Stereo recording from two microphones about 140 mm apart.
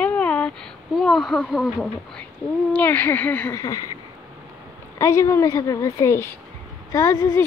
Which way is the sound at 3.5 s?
25° left (ahead or behind).